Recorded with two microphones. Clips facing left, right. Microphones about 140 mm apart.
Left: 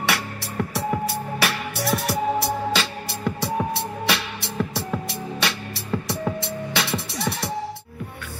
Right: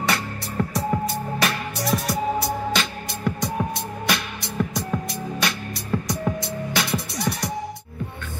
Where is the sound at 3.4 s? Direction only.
30° left (ahead or behind).